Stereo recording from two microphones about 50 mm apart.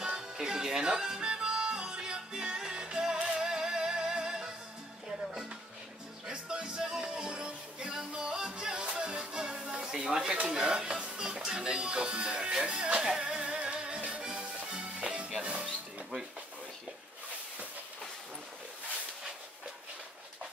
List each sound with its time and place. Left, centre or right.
0.0 s music: centre
6.2 s music: centre
10.4 s speech: centre
13.7 s music: centre
15.4 s a sound: right